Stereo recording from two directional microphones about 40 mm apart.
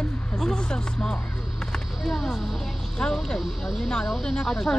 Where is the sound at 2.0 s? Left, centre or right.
Centre.